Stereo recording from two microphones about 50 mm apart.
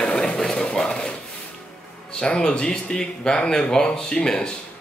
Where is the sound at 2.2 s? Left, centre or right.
Centre.